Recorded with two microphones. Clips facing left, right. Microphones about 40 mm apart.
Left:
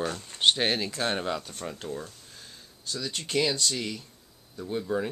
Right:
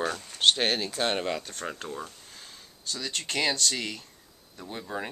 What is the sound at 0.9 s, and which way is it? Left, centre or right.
Speech, right.